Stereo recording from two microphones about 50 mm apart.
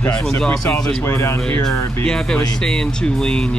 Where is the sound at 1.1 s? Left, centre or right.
Left.